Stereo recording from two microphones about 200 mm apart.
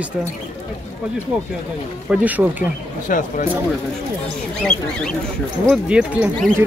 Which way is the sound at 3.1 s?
40° left (ahead or behind).